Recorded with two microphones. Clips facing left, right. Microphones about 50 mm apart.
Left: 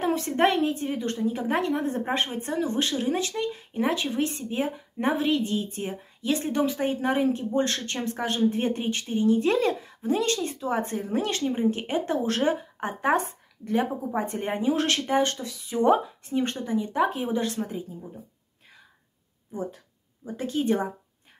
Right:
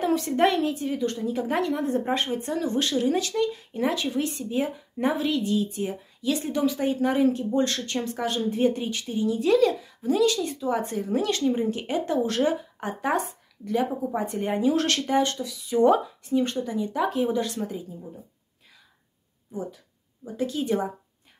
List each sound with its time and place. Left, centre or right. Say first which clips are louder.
0.0 s a woman's voice: right 1 dB; left
15.7 s a woman's voice: right 2 dB; left
19.5 s a woman's voice: left 1 dB; left